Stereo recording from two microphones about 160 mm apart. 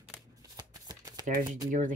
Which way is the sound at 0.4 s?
25° right (ahead or behind).